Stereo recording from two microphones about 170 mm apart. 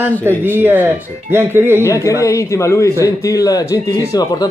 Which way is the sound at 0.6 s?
10° right (ahead or behind).